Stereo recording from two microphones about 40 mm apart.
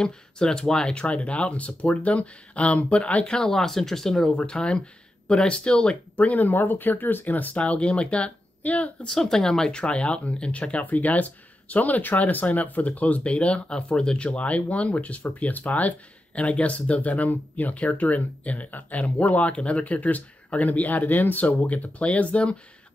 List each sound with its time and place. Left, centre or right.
0.0 s speech: centre
1.0 s speech: left
3.3 s speech: centre
6.1 s speech: left
6.5 s speech: left
7.5 s speech: left
9.2 s speech: centre; by 22.6 s left